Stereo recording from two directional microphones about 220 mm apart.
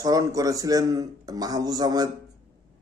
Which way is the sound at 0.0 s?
15° right (ahead or behind).